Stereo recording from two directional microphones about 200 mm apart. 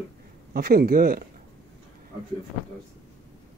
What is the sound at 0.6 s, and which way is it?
Speech, 50° right (ahead or behind).